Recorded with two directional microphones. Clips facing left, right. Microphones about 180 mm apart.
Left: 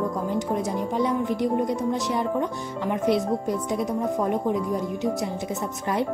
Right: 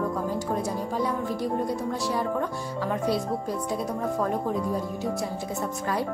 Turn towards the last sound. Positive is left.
turn(degrees=20)  # may be behind; listen again after turning